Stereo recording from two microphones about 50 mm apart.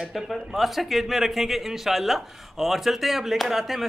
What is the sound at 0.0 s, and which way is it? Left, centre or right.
A man's voice, centre.